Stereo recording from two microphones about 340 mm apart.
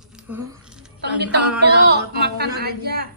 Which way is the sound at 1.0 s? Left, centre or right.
Right.